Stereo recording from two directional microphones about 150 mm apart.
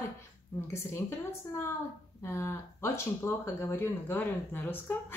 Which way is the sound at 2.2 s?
15° left (ahead or behind).